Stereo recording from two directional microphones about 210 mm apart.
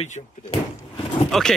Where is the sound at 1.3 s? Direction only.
Centre (ahead or behind).